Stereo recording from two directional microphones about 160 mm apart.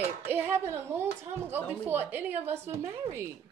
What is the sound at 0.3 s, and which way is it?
Speech, 15° right (ahead or behind).